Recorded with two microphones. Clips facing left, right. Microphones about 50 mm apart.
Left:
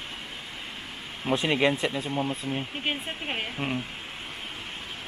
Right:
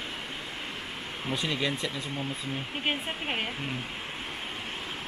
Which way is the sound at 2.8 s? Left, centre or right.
Centre.